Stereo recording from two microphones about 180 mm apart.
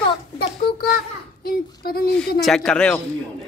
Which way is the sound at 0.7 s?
55° left (ahead or behind).